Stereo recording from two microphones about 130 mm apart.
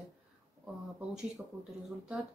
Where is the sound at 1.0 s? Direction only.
10° right (ahead or behind).